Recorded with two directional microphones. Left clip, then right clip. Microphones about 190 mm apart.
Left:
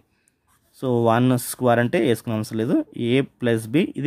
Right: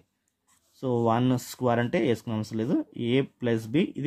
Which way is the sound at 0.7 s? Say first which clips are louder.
Left 6 dB; 40° left (ahead or behind).